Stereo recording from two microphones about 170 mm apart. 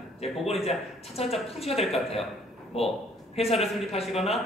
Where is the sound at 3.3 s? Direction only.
35° left (ahead or behind).